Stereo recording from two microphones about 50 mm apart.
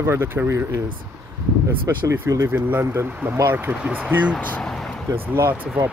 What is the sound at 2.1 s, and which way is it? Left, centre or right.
Speech, right.